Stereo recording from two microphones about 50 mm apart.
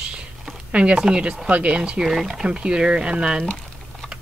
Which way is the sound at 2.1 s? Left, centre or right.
Centre.